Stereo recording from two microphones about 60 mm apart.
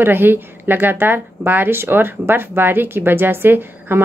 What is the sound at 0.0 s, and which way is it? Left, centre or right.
Speech, right.